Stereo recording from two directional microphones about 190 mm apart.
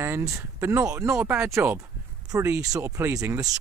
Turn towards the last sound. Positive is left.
turn(degrees=-15)  # may be behind; listen again after turning